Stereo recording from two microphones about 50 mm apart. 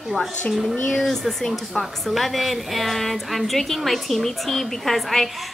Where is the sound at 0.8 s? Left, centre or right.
Centre.